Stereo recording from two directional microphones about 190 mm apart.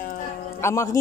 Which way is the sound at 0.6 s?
15° left (ahead or behind).